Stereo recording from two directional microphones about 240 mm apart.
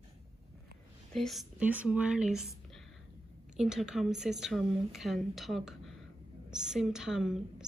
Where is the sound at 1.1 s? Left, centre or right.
Centre.